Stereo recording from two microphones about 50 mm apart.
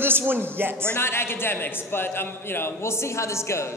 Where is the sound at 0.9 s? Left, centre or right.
Left.